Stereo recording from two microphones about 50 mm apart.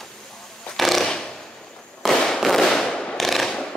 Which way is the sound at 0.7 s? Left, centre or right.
Centre.